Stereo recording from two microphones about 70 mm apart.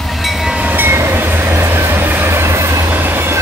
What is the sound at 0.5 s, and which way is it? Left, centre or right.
Train, right.